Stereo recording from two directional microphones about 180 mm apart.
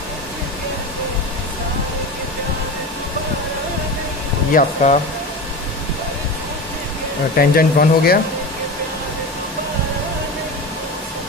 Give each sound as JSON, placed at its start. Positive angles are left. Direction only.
{"t": 4.6, "sound": "speech", "side_deg": 40}
{"t": 7.3, "sound": "speech", "side_deg": 55}